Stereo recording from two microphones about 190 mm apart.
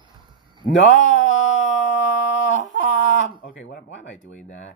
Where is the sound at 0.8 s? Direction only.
80° left.